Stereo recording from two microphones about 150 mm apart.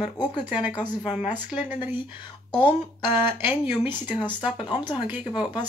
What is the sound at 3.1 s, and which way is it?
Speech, 15° right (ahead or behind).